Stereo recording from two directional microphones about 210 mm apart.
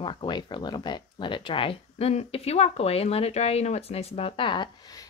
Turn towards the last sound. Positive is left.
turn(degrees=20)  # may be behind; listen again after turning